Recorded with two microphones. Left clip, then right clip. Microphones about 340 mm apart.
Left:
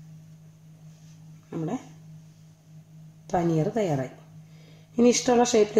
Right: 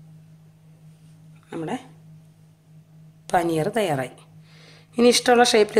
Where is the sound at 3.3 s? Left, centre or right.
Right.